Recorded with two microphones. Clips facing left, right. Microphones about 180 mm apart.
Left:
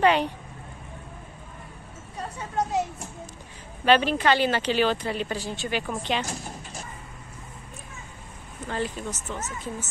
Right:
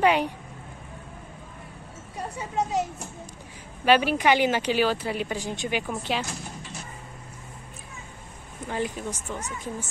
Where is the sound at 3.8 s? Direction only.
10° right (ahead or behind).